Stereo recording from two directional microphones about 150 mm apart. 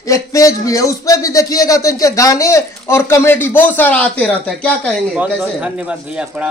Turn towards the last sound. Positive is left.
turn(degrees=-10)  # may be behind; listen again after turning